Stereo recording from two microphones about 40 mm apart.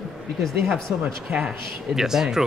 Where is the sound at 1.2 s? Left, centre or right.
Centre.